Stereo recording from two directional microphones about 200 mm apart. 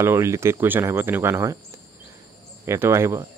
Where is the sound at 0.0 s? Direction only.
15° right (ahead or behind).